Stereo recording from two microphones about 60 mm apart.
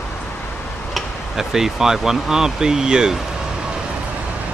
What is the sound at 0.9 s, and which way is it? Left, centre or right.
Speech, centre.